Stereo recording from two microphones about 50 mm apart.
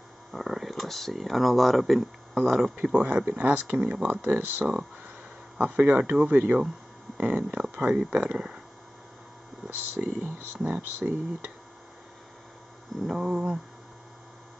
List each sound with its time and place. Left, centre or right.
0.3 s speech: centre
2.7 s speech: right
9.9 s speech: right
13.1 s a sound: centre